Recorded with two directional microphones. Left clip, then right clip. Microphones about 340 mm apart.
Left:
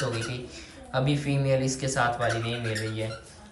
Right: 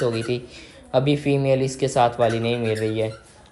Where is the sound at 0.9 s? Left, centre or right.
Centre.